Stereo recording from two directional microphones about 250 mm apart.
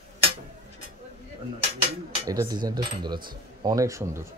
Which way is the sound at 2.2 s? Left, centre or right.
Centre.